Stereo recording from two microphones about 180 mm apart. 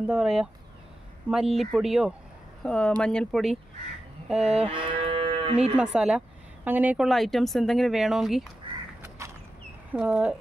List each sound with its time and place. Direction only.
0.0 s speech: 5° right (ahead or behind)
4.6 s moo: 30° right (ahead or behind)
5.8 s speech: 5° right (ahead or behind)
9.2 s a sound: 15° right (ahead or behind)
9.9 s speech: 5° right (ahead or behind)